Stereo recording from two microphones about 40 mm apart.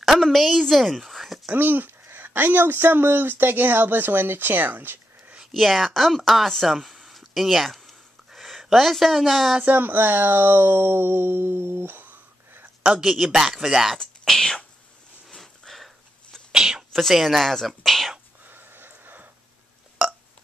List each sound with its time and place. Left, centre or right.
0.2 s a woman's voice: centre
1.5 s speech: right
5.5 s speech: centre
6.6 s a sound: centre
8.3 s speech: centre
9.7 s speech: right
12.8 s speech: centre
14.2 s whispering: centre
15.2 s a sound: centre
16.5 s a sound: centre
17.1 s speech: centre
18.4 s a sound: right